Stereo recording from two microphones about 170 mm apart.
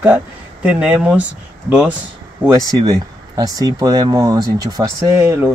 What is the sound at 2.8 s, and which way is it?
Speech, 20° right (ahead or behind).